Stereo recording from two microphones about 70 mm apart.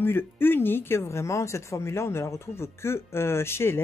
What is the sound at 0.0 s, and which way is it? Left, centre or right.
Speech, left.